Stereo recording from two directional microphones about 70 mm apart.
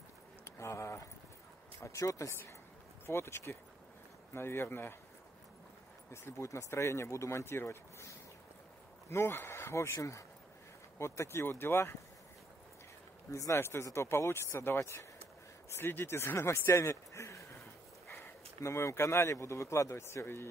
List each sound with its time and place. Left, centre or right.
0.6 s a sound: left
1.8 s speech: left
3.1 s speech: left
6.2 s speech: left
9.1 s speech: left
9.9 s speech: left
13.3 s speech: left
13.6 s speech: left
14.8 s speech: left
15.7 s speech: left
18.6 s speech: left